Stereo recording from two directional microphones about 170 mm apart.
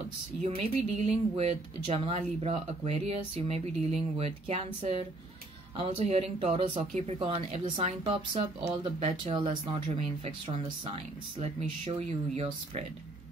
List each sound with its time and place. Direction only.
0.6 s speech: 40° right (ahead or behind)
5.8 s speech: 35° right (ahead or behind)